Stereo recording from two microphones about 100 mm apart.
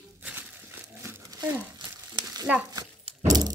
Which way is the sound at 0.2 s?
15° right (ahead or behind).